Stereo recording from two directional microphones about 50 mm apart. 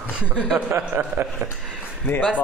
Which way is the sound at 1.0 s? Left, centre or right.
Right.